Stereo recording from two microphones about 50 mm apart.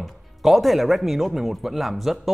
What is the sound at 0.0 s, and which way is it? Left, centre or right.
Speech, centre.